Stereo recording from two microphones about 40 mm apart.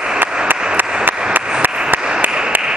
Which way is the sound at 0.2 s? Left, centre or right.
Right.